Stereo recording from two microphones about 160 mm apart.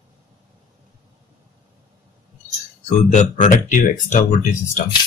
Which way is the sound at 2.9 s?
50° left (ahead or behind).